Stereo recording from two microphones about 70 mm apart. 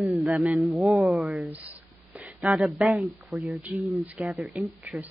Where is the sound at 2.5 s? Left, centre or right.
Centre.